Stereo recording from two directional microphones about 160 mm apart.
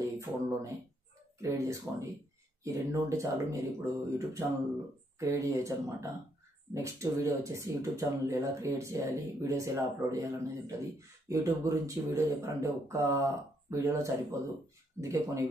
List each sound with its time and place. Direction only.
0.0 s speech: 20° right (ahead or behind)